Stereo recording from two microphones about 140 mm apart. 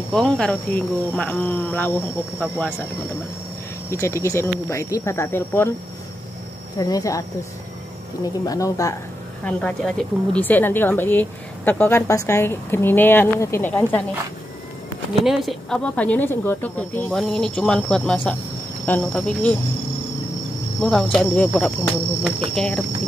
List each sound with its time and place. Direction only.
0.1 s a woman's voice: 5° left (ahead or behind)
3.9 s speech: 20° left (ahead or behind)
6.8 s speech: 25° left (ahead or behind)
9.4 s a woman's voice: 10° left (ahead or behind)
15.2 s a woman's voice: centre (ahead or behind)
20.8 s speech: 5° left (ahead or behind)
22.5 s a woman's voice: 5° left (ahead or behind)